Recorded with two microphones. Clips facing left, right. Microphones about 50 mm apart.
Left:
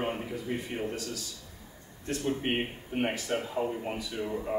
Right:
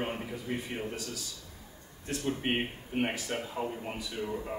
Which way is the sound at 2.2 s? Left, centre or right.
Centre.